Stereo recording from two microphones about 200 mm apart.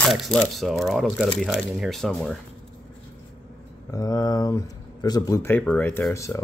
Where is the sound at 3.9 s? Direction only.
20° left (ahead or behind).